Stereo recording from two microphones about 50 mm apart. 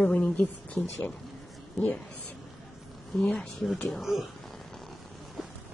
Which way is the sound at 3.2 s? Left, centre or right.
Centre.